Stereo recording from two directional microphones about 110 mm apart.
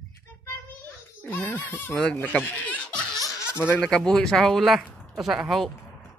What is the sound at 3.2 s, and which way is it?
Baby laughter, 20° left (ahead or behind).